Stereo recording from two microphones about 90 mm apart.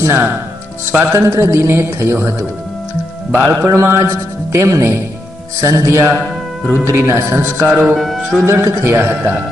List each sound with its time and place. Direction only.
0.0 s a man's voice: 30° right (ahead or behind)
7.8 s speech: 5° right (ahead or behind)
8.5 s a man's voice: 35° right (ahead or behind)